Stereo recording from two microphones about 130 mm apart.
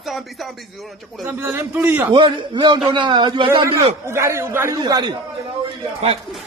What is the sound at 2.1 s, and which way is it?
A man's voice, 40° right (ahead or behind).